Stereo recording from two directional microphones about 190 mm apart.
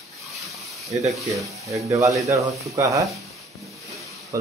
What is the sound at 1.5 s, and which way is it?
Speech, 15° right (ahead or behind).